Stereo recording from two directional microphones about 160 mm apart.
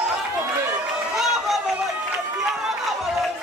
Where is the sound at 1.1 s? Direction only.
Centre (ahead or behind).